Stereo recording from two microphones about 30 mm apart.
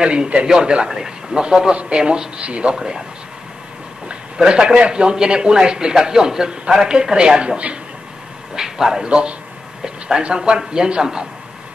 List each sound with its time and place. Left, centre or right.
0.0 s speech: right
0.8 s speech: centre
2.4 s speech: right
4.5 s speech: right
8.5 s a man's voice: centre
9.0 s speech: right